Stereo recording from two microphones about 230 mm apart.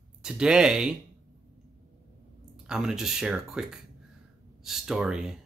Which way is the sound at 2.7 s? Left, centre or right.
Centre.